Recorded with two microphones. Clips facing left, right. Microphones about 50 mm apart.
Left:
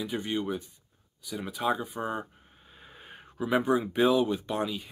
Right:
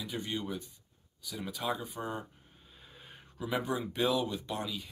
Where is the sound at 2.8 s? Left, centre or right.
Left.